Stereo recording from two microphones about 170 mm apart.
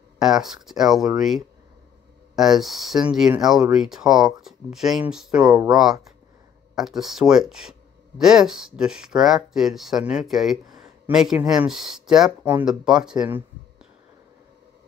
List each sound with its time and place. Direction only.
0.2 s speech: centre (ahead or behind)
2.3 s speech: centre (ahead or behind)
5.5 s speech: 25° right (ahead or behind)
5.8 s speech: centre (ahead or behind)